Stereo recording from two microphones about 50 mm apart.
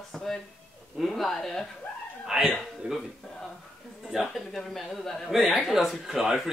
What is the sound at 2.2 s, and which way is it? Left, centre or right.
Speech, centre.